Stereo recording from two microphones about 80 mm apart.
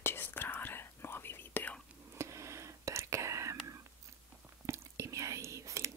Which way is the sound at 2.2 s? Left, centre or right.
Right.